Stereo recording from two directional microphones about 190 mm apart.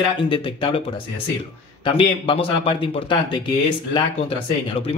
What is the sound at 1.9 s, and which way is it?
Speech, 30° left (ahead or behind).